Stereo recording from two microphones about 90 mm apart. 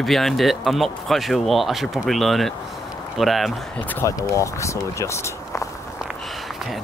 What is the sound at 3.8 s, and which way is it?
Speech, 20° left (ahead or behind).